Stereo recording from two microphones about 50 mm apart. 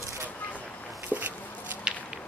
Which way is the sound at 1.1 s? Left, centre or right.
Left.